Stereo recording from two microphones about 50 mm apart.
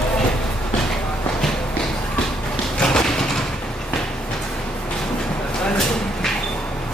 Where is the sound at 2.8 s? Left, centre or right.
Centre.